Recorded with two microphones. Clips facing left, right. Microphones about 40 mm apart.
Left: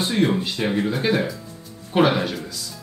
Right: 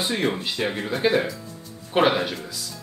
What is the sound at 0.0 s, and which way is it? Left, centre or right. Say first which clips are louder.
Speech: left 4 dB; centre.